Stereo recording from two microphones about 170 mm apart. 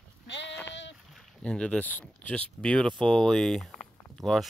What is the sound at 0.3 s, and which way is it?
Sheep, 90° left.